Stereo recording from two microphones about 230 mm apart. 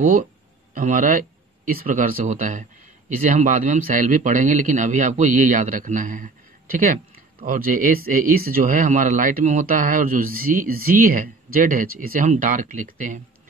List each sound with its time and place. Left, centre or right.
0.0 s speech: right